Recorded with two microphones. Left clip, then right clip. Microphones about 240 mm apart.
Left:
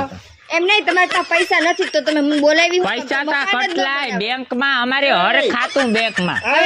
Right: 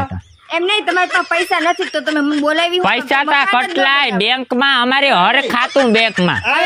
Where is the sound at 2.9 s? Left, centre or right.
Right.